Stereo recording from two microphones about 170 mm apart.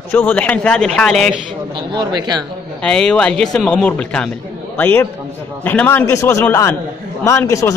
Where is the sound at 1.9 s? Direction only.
25° right (ahead or behind).